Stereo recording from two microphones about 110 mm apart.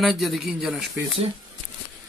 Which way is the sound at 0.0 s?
Centre (ahead or behind).